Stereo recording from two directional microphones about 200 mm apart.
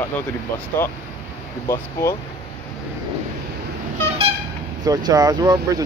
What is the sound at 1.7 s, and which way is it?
Speech, 15° left (ahead or behind).